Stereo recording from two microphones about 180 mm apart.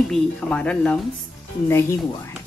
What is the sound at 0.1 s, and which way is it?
Speech, 5° left (ahead or behind).